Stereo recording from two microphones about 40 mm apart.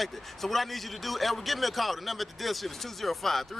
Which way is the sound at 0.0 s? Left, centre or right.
Centre.